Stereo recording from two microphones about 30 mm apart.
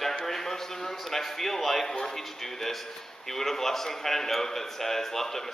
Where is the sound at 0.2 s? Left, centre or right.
Centre.